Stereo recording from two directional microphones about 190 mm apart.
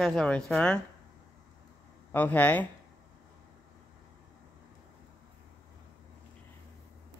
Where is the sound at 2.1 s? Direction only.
10° left (ahead or behind).